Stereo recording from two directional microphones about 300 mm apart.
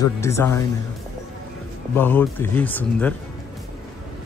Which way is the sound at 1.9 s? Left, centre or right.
Centre.